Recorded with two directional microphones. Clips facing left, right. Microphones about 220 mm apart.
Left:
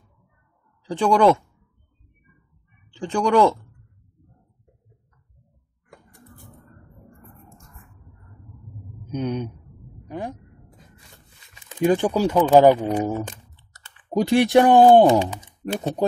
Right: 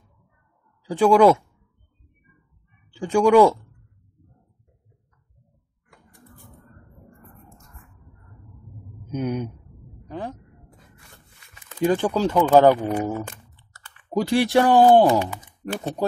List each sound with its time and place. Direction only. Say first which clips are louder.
0.8 s speech: right 2 dB; 5° right (ahead or behind)
2.9 s speech: right 4 dB; 10° right (ahead or behind)
9.1 s speech: even; 5° right (ahead or behind)
10.0 s speech: left 1 dB; 15° left (ahead or behind)
11.7 s speech: left 2 dB; 15° left (ahead or behind)